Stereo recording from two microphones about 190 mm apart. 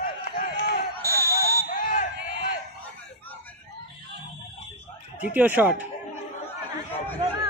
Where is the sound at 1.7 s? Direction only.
45° left (ahead or behind).